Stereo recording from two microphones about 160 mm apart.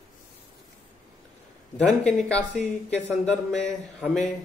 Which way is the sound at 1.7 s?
5° left (ahead or behind).